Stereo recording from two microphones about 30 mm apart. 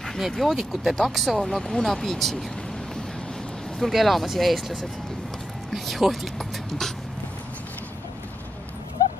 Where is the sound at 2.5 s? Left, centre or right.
Centre.